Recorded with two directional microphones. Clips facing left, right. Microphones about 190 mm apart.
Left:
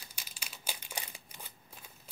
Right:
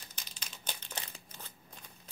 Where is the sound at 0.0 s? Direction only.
10° left (ahead or behind).